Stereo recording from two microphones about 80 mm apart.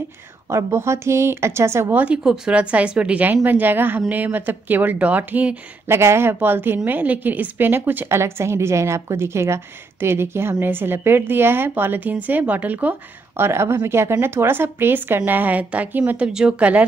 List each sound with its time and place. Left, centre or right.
0.5 s a woman's voice: right
2.2 s a woman's voice: centre
5.9 s a woman's voice: right
13.4 s a woman's voice: right; by 16.8 s centre